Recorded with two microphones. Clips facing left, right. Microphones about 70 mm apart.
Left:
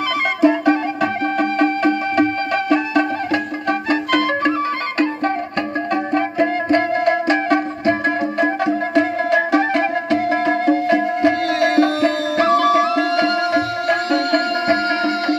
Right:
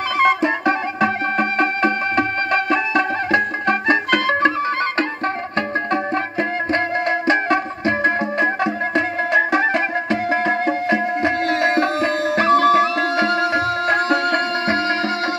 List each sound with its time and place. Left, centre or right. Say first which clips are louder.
0.2 s music: left 1 dB; right
6.7 s music: left 3 dB; right